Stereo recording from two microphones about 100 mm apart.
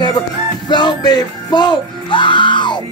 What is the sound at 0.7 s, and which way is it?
Speech, 50° left (ahead or behind).